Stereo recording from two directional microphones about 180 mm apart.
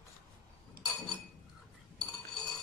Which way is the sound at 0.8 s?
55° right (ahead or behind).